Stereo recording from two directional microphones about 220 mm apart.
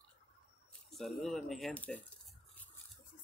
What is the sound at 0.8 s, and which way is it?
Speech, centre (ahead or behind).